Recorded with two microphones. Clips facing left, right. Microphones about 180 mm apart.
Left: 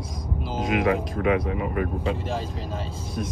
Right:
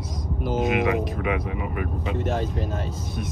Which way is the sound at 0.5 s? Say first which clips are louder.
Right 2 dB; 25° right (ahead or behind).